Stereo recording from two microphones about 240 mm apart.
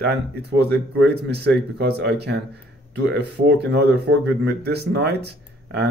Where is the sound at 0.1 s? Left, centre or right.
Right.